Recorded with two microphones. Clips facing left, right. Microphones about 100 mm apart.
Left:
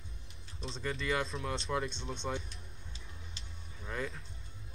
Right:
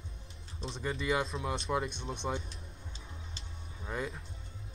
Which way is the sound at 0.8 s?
15° right (ahead or behind).